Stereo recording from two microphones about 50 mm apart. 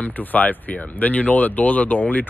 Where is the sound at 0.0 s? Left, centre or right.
Left.